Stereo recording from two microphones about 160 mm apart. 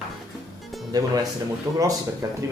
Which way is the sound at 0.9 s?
25° right (ahead or behind).